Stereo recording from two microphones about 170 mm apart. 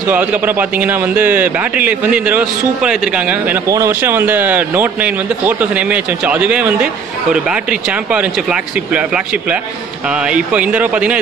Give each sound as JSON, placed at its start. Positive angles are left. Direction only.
{"t": 0.1, "sound": "a man's voice", "side_deg": -10}